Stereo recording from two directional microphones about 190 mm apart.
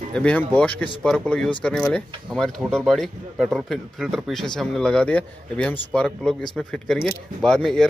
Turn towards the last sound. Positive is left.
turn(degrees=5)  # may be behind; listen again after turning